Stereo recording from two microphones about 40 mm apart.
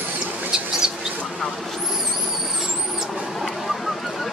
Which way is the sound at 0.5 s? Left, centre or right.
Centre.